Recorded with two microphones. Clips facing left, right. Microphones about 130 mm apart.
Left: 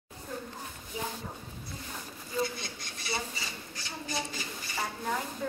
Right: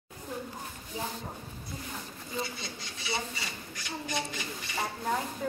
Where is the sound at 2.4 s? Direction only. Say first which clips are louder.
Left 4 dB; 50° left (ahead or behind).